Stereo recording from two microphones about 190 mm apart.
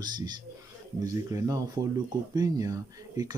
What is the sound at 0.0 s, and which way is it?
Speech, 20° right (ahead or behind).